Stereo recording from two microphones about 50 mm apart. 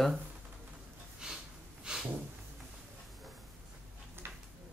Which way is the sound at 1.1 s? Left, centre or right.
Centre.